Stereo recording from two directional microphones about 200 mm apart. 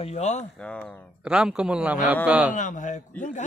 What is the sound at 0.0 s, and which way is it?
Speech, 35° left (ahead or behind).